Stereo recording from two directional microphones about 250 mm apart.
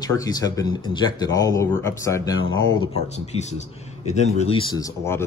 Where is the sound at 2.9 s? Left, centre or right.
Left.